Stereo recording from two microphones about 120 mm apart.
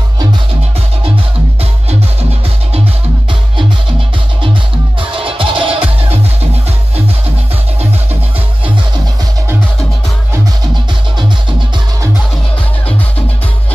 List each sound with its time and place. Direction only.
5.1 s music: 45° right (ahead or behind)